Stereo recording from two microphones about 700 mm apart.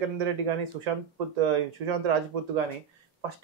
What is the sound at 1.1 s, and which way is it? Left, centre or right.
Speech, right.